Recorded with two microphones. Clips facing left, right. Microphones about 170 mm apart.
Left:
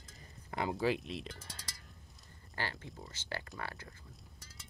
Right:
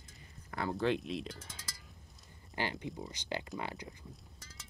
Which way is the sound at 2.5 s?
15° right (ahead or behind).